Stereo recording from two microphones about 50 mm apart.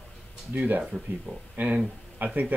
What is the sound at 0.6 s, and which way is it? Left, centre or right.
Speech, right.